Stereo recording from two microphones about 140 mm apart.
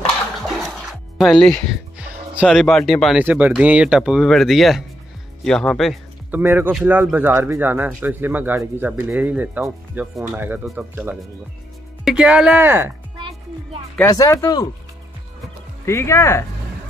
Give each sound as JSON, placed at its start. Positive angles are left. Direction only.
{"t": 1.1, "sound": "speech", "side_deg": 0}
{"t": 2.0, "sound": "music", "side_deg": -5}
{"t": 2.9, "sound": "speech", "side_deg": 0}
{"t": 3.2, "sound": "speech", "side_deg": -10}
{"t": 6.3, "sound": "speech", "side_deg": -15}
{"t": 14.0, "sound": "speech", "side_deg": 20}
{"t": 15.8, "sound": "speech", "side_deg": 20}